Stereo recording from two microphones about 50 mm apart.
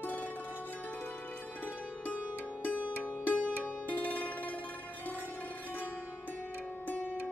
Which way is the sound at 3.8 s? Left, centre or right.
Left.